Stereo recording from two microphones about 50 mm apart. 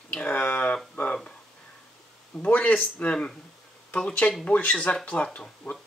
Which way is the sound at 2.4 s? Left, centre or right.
Left.